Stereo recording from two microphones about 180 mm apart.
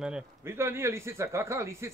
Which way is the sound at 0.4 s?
15° right (ahead or behind).